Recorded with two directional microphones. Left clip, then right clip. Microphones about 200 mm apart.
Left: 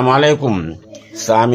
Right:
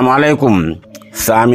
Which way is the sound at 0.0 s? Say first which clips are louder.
Right 2 dB; 35° right (ahead or behind).